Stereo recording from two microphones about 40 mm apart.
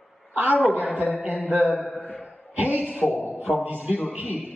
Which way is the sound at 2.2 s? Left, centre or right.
Right.